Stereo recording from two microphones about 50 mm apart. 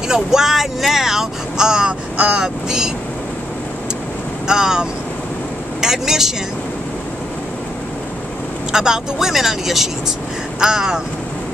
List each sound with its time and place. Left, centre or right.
0.1 s speech: centre
2.1 s speech: right
2.4 s speech: centre
4.5 s speech: centre
8.7 s speech: centre